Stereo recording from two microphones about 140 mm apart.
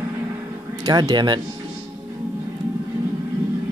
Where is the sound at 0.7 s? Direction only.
25° right (ahead or behind).